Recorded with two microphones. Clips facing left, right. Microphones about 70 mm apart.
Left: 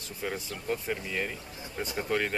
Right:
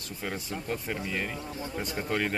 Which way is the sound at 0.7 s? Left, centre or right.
Centre.